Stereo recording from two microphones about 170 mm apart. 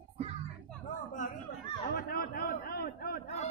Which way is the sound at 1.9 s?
60° left (ahead or behind).